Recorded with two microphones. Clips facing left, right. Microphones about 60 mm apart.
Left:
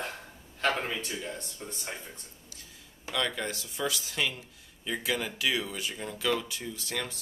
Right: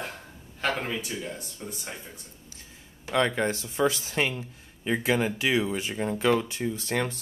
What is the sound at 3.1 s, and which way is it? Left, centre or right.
Speech, right.